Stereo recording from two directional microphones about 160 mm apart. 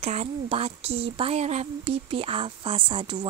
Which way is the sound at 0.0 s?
40° right (ahead or behind).